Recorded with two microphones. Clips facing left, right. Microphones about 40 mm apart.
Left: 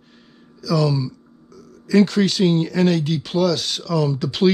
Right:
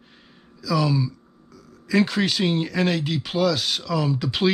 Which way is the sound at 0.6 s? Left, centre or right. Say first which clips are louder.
Left 2 dB; centre.